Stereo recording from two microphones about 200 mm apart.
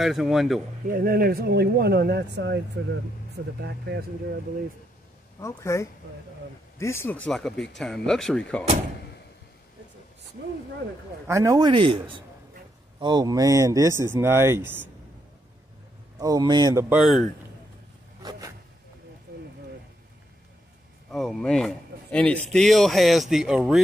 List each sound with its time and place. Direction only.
0.0 s a man's voice: centre (ahead or behind)
0.9 s speech: 45° right (ahead or behind)
5.4 s speech: 15° left (ahead or behind)
7.2 s a man's voice: centre (ahead or behind)
11.2 s a man's voice: 15° right (ahead or behind)
16.2 s a man's voice: 20° right (ahead or behind)
16.9 s a man's voice: centre (ahead or behind)
21.1 s a man's voice: centre (ahead or behind)